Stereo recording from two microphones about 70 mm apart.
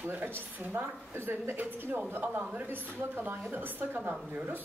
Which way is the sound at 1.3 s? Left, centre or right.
Right.